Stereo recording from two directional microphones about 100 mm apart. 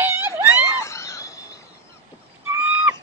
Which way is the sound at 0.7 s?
30° left (ahead or behind).